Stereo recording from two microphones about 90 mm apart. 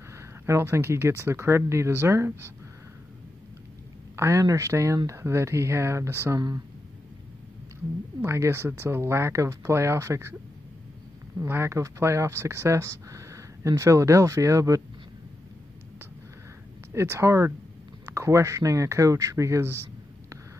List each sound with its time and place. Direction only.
0.5 s speech: 30° right (ahead or behind)
4.2 s speech: 35° right (ahead or behind)
8.2 s speech: 30° right (ahead or behind)
11.4 s speech: 25° right (ahead or behind)
16.9 s speech: 30° right (ahead or behind)